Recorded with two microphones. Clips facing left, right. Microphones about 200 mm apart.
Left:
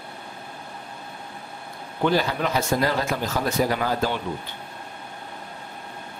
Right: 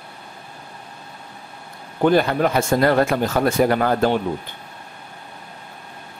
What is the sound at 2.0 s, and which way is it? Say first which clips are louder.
Speech: right 6 dB; 55° right (ahead or behind).